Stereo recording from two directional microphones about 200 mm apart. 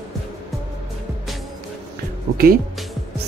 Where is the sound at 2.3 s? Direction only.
50° right (ahead or behind).